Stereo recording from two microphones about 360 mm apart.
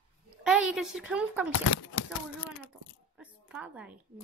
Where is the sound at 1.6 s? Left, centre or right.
Left.